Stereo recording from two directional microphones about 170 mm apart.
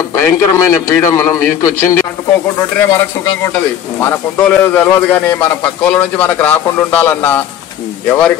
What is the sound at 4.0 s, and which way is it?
A man's voice, 15° left (ahead or behind).